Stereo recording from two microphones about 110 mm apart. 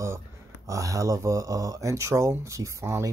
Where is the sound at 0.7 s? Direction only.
30° right (ahead or behind).